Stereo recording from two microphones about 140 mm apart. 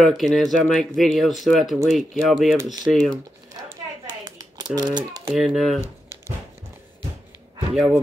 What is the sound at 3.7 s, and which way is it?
Clapping, 25° right (ahead or behind).